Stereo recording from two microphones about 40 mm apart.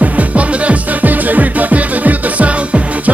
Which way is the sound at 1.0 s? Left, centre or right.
Right.